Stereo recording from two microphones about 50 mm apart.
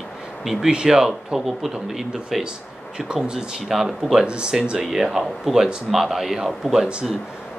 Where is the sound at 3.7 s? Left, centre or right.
Centre.